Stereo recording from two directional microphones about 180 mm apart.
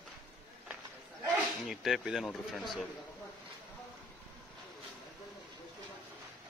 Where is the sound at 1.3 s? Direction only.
Centre (ahead or behind).